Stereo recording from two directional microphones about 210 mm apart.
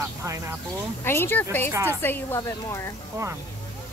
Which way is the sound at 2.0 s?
10° left (ahead or behind).